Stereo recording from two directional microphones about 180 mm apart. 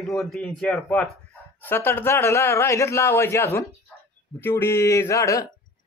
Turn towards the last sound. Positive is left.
turn(degrees=15)  # may be behind; listen again after turning